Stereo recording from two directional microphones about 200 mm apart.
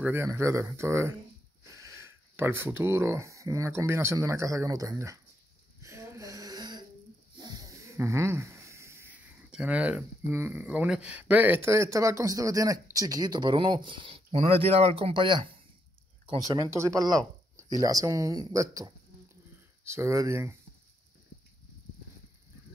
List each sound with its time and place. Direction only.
0.0 s speech: 10° right (ahead or behind)
5.8 s a sound: 15° right (ahead or behind)
7.3 s speech: 20° right (ahead or behind)
16.7 s speech: 15° right (ahead or behind)
19.9 s speech: 15° right (ahead or behind)